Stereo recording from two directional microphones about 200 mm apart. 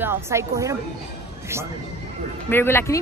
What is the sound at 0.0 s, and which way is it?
Speech, 15° right (ahead or behind).